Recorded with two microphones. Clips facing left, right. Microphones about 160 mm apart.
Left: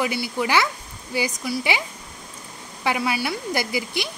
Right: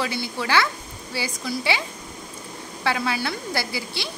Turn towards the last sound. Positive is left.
turn(degrees=20)  # may be behind; listen again after turning